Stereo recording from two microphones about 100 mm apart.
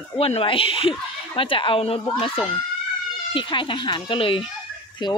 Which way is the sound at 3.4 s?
55° left (ahead or behind).